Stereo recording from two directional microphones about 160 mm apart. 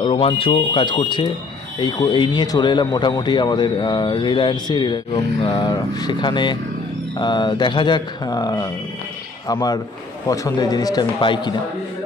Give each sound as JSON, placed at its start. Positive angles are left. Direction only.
{"t": 0.0, "sound": "speech", "side_deg": 35}